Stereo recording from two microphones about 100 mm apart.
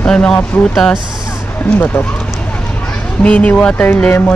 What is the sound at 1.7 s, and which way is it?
Speech, 20° left (ahead or behind).